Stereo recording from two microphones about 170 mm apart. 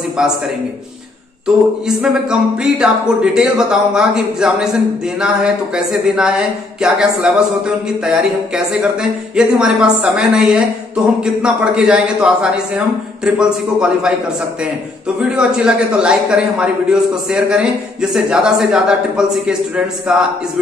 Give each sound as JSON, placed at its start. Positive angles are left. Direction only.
{"t": 0.2, "sound": "speech", "side_deg": -5}
{"t": 1.9, "sound": "speech", "side_deg": -5}
{"t": 15.1, "sound": "speech", "side_deg": -5}